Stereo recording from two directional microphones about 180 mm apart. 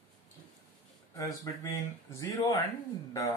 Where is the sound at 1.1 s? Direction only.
20° left (ahead or behind).